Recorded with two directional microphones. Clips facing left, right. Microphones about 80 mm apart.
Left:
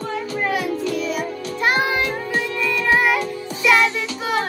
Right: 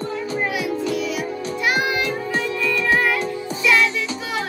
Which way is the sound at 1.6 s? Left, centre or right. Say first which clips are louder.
Left 2 dB; left.